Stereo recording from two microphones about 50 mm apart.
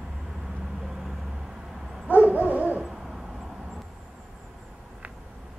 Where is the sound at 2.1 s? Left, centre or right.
Right.